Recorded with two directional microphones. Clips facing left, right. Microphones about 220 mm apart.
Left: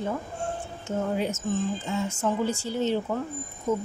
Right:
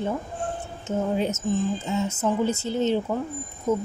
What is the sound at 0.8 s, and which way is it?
A woman's voice, 25° right (ahead or behind).